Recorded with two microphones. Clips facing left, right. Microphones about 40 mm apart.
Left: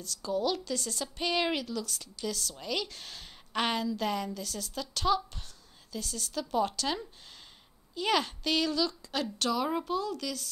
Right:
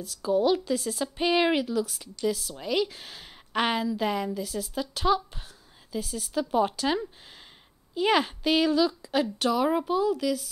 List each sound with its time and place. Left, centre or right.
0.0 s a woman's voice: centre